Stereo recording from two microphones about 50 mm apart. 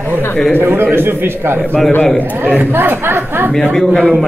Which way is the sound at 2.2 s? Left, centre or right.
Right.